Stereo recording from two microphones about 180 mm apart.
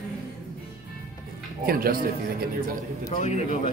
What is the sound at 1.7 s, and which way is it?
A man's voice, 55° right (ahead or behind).